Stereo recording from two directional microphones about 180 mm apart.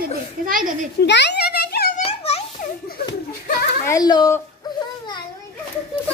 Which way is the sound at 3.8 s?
20° left (ahead or behind).